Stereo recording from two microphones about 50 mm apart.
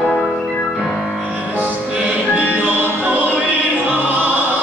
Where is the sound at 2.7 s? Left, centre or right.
Right.